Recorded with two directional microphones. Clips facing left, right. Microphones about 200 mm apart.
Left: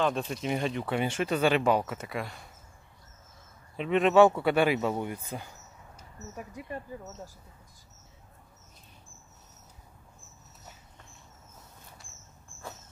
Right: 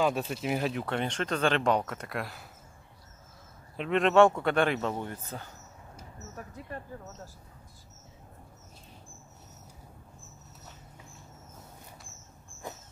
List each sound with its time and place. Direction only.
0.0 s speech: 5° right (ahead or behind)
3.7 s speech: centre (ahead or behind)
12.6 s walk: 20° right (ahead or behind)